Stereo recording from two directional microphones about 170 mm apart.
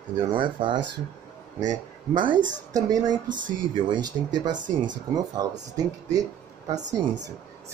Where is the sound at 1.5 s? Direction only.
45° right (ahead or behind).